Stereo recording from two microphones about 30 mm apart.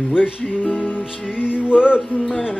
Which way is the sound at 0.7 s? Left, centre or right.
Left.